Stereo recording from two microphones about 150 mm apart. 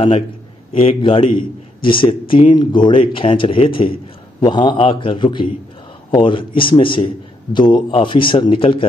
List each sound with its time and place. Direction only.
0.7 s a man's voice: 35° left (ahead or behind)